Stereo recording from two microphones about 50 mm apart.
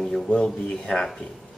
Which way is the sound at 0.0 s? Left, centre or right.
Centre.